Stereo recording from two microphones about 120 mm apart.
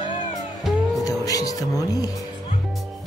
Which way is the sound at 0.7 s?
Centre (ahead or behind).